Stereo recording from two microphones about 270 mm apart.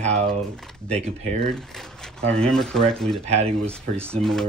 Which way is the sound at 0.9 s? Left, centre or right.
Right.